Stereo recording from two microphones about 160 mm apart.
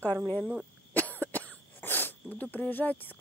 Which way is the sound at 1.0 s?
10° left (ahead or behind).